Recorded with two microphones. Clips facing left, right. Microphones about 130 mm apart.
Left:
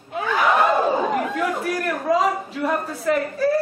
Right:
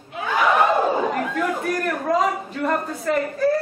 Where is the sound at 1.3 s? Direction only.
5° left (ahead or behind).